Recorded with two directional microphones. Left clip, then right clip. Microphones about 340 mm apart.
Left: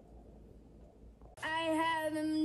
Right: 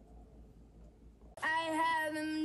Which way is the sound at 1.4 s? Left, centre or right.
Centre.